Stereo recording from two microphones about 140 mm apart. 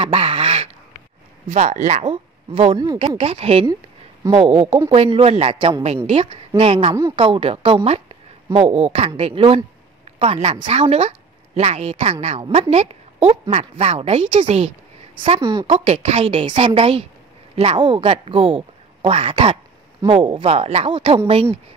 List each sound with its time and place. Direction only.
0.0 s duck: 40° right (ahead or behind)
1.5 s a woman's voice: 55° right (ahead or behind)
2.5 s a woman's voice: 40° right (ahead or behind)
15.6 s a woman's voice: 45° right (ahead or behind)